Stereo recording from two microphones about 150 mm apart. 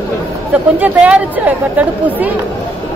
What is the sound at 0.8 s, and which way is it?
Speech, 10° right (ahead or behind).